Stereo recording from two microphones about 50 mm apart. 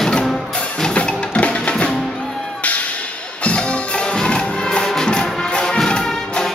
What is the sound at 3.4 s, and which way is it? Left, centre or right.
Music, left.